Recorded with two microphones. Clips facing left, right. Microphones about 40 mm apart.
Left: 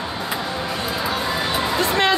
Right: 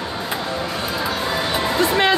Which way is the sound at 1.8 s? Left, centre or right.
Centre.